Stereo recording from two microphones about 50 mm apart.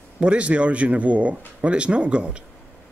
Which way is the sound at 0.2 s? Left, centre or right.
Right.